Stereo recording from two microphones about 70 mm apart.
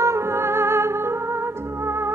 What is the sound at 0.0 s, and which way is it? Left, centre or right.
Music, right.